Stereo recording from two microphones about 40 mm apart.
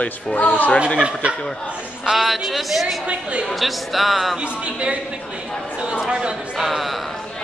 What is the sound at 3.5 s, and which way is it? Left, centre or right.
Speech, centre.